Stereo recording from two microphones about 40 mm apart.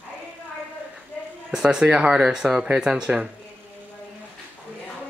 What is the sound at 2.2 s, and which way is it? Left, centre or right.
Speech, centre.